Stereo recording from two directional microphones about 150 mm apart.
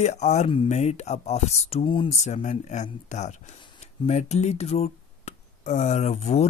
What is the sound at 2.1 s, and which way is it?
Speech, 50° left (ahead or behind).